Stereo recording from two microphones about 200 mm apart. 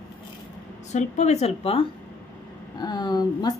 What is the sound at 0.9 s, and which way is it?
A woman's voice, 35° left (ahead or behind).